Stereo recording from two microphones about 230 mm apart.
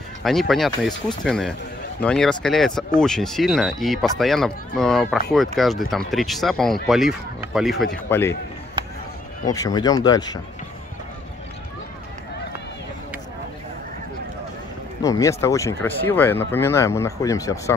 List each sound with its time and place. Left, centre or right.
0.2 s speech: centre
8.1 s speech: centre
9.5 s speech: centre
15.0 s speech: centre